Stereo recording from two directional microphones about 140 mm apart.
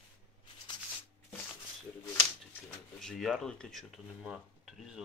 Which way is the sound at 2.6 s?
Centre (ahead or behind).